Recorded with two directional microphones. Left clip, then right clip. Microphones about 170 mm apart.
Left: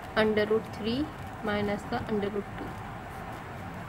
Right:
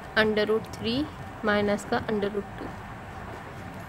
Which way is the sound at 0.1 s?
50° right (ahead or behind).